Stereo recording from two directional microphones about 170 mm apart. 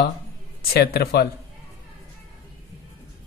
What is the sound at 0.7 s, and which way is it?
Speech, 70° left (ahead or behind).